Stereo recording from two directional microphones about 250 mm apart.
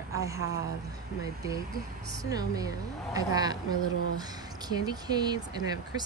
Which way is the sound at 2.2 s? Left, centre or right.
Centre.